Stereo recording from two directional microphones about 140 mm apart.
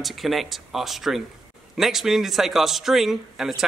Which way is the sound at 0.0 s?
Centre (ahead or behind).